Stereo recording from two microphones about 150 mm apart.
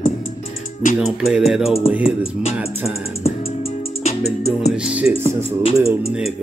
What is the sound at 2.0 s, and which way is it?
Speech, 40° left (ahead or behind).